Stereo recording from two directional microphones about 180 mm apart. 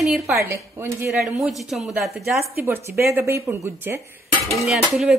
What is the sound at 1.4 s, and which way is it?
Speech, centre (ahead or behind).